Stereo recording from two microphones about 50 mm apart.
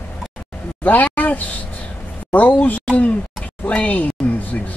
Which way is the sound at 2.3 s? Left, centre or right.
Left.